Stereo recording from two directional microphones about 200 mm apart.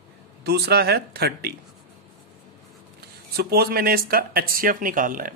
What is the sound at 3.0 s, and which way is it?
Speech, 50° right (ahead or behind).